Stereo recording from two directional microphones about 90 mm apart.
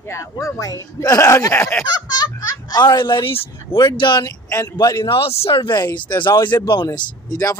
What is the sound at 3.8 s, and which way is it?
Speech, 60° left (ahead or behind).